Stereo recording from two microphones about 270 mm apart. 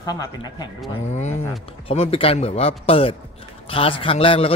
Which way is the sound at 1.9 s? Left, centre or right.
Left.